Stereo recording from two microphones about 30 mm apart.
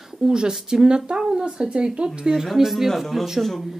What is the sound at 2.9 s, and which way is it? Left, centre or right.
Frying, centre.